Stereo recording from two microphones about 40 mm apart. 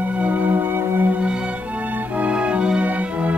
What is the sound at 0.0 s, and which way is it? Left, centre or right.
Music, right.